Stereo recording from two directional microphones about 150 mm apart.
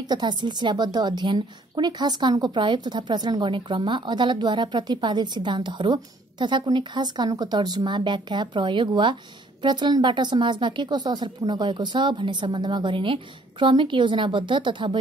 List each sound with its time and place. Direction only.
0.1 s a woman's voice: 30° right (ahead or behind)